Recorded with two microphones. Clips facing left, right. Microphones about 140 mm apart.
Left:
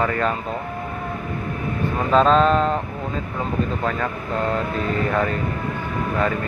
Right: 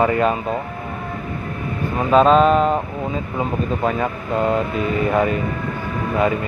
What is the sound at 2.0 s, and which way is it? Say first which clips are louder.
Speech: right 3 dB; 10° right (ahead or behind).